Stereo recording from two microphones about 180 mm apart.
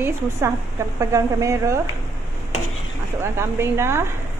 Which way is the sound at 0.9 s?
15° right (ahead or behind).